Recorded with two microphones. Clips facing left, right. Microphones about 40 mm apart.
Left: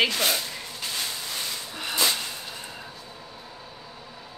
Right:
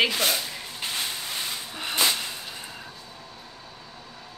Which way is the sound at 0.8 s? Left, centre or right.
Right.